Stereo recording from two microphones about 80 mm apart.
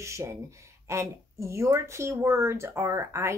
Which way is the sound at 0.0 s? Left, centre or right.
Right.